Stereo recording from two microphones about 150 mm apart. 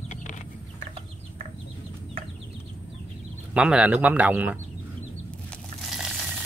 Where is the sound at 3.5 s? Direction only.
5° right (ahead or behind).